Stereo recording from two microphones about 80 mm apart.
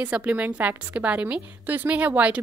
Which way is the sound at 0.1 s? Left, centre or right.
Centre.